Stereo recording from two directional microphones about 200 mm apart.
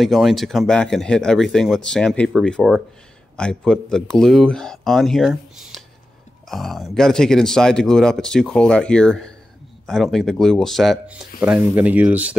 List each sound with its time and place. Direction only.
0.0 s speech: centre (ahead or behind)